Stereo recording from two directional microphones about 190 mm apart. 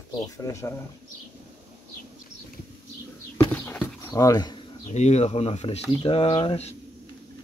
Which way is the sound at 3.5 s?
10° left (ahead or behind).